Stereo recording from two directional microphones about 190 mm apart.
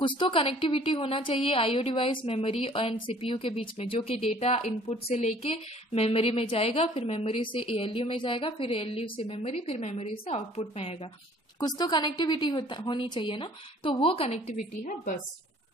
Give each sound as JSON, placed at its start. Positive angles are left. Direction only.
{"t": 0.0, "sound": "a woman's voice", "side_deg": 25}
{"t": 11.6, "sound": "a woman's voice", "side_deg": 20}